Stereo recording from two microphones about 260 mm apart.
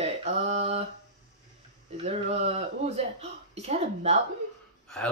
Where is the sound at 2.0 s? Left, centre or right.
Right.